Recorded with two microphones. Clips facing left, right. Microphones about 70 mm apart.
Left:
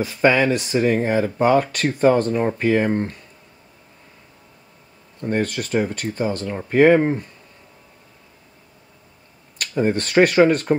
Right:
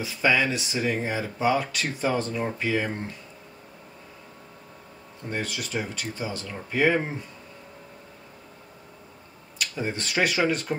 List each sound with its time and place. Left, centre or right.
0.0 s speech: left
5.3 s speech: left
9.6 s speech: left